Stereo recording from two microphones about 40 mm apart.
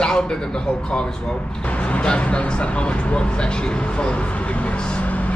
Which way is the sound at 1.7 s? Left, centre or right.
Left.